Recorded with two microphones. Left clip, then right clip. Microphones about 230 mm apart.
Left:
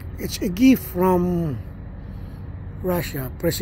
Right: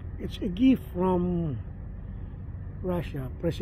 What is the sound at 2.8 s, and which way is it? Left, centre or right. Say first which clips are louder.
Speech: left 8 dB; centre.